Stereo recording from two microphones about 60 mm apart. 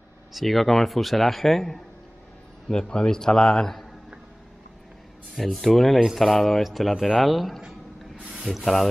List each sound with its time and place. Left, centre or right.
0.3 s a man's voice: centre
5.3 s a man's voice: centre
8.2 s a sound: centre
8.5 s a man's voice: centre